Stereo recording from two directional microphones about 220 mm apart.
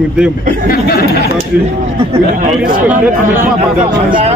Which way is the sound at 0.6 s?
45° left (ahead or behind).